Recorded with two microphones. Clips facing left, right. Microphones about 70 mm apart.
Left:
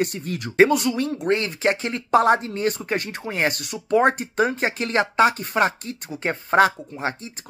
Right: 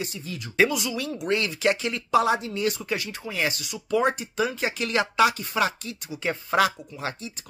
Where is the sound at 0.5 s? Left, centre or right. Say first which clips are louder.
Left 6 dB; left.